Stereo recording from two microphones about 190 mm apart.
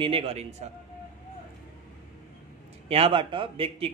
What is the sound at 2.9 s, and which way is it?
A man's voice, 30° right (ahead or behind).